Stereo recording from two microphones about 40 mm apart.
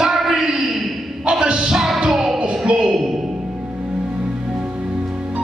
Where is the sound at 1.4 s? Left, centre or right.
Right.